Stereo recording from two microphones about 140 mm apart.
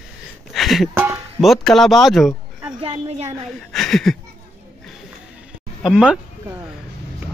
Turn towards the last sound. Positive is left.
turn(degrees=-10)  # may be behind; listen again after turning